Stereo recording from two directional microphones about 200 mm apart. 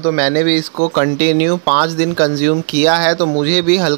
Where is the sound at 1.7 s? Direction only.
40° right (ahead or behind).